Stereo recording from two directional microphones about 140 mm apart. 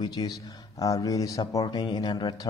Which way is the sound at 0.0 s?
30° left (ahead or behind).